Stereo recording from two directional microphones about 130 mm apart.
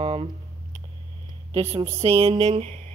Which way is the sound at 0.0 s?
50° right (ahead or behind).